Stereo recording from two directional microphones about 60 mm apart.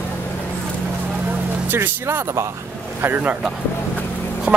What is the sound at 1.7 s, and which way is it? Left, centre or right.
Speech, right.